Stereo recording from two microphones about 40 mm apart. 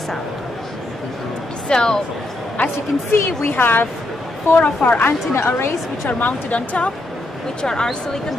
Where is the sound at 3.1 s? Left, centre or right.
Left.